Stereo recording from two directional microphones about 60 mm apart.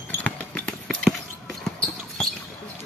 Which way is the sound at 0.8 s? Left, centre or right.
Centre.